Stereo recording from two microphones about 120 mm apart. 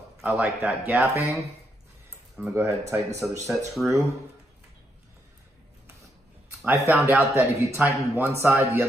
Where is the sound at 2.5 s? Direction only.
25° right (ahead or behind).